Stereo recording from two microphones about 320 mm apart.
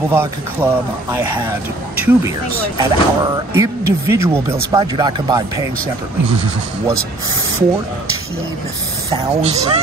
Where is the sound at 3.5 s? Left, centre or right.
Centre.